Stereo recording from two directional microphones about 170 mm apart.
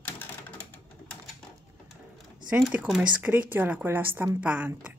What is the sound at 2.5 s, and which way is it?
Speech, 5° right (ahead or behind).